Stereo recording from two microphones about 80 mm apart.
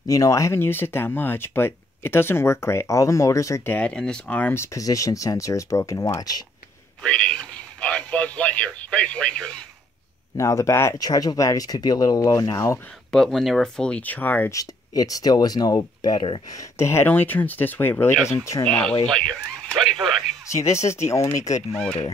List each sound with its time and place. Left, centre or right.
0.0 s speech: left
0.6 s speech: left
3.6 s speech: centre
4.6 s speech: left
7.0 s a sound: centre
10.3 s speech: left
11.0 s speech: left
13.1 s speech: centre; by 14.5 s left
14.5 s speech: left
16.5 s speech: left
18.7 s speech: centre
20.6 s speech: left
21.7 s speech: centre